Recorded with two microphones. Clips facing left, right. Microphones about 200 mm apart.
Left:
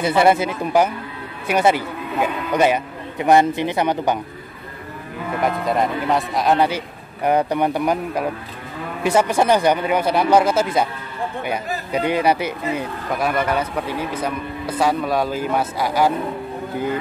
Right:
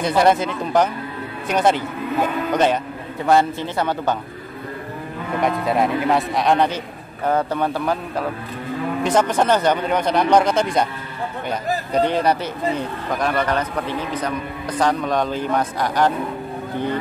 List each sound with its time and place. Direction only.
0.0 s speech: 5° left (ahead or behind)
5.4 s speech: centre (ahead or behind)